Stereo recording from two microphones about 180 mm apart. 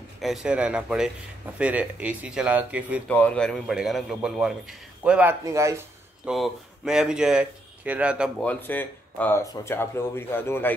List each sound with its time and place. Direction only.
0.2 s speech: centre (ahead or behind)
3.1 s speech: 10° left (ahead or behind)
5.4 s speech: 15° right (ahead or behind)
6.2 s speech: centre (ahead or behind)
8.5 s speech: 10° left (ahead or behind)